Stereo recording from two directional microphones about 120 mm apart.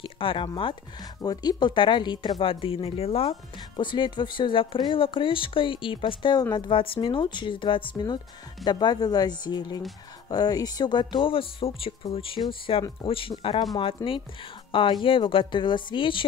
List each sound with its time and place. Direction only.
0.0 s speech: 45° left (ahead or behind)
1.2 s speech: 35° left (ahead or behind)
2.5 s speech: 50° left (ahead or behind)